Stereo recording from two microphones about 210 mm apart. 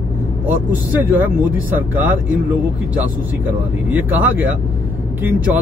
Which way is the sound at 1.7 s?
10° right (ahead or behind).